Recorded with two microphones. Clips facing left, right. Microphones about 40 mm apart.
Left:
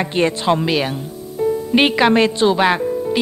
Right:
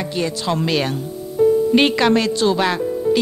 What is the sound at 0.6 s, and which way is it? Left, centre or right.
A woman's voice, centre.